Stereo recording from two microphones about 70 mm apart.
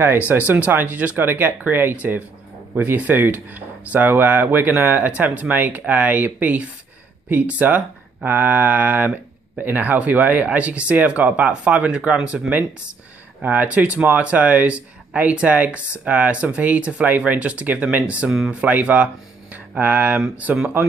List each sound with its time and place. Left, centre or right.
0.3 s speech: right
18.3 s speech: centre
18.6 s speech: centre